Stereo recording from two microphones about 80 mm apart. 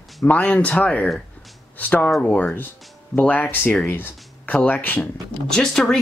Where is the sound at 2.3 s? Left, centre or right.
Centre.